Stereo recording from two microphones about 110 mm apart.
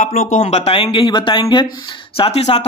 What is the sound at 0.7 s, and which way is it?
Speech, 50° left (ahead or behind).